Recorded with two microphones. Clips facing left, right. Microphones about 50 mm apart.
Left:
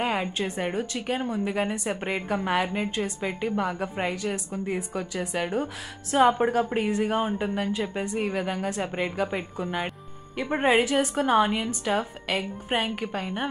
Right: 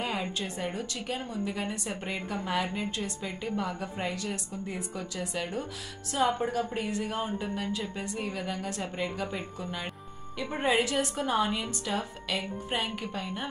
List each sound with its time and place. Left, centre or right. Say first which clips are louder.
0.0 s a woman's voice: left 6 dB; left
11.2 s speech: left 6 dB; left